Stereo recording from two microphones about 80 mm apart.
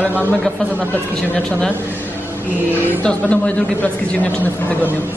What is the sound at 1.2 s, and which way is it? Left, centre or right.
Speech, centre.